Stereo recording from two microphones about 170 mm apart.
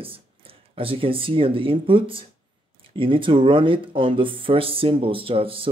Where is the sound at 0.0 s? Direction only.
35° right (ahead or behind).